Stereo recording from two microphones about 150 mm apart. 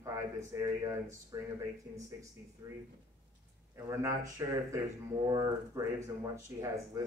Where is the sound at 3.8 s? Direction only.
20° right (ahead or behind).